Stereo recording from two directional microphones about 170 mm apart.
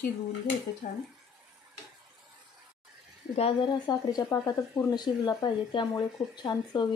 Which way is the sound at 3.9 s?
25° left (ahead or behind).